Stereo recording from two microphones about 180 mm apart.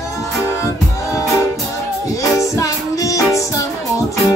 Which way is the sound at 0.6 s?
15° left (ahead or behind).